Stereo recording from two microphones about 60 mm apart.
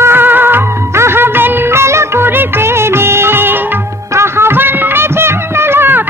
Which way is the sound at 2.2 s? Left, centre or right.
Right.